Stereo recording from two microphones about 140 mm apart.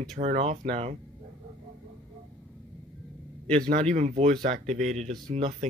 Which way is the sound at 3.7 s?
50° right (ahead or behind).